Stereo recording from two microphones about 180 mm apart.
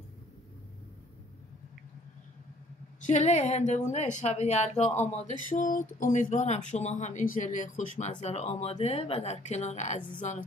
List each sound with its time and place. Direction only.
3.0 s speech: 40° left (ahead or behind)